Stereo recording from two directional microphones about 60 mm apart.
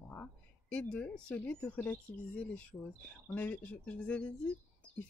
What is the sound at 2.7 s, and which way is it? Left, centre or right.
Speech, left.